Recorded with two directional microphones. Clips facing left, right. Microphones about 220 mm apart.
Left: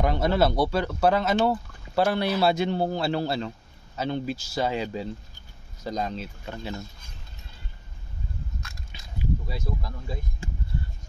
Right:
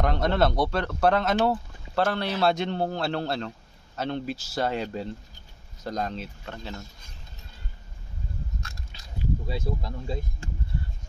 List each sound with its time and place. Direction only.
0.0 s speech: 5° left (ahead or behind)
9.5 s speech: 25° right (ahead or behind)